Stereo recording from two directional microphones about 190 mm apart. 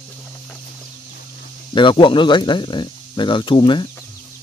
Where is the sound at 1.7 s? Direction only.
25° left (ahead or behind).